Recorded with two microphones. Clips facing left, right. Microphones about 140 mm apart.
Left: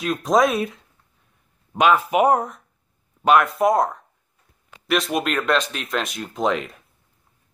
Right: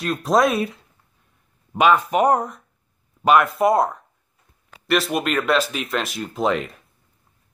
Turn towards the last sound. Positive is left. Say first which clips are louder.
# right 1 dB
turn(degrees=0)  # may be behind; listen again after turning